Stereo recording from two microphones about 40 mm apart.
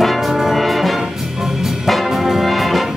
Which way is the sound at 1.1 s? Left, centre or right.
Centre.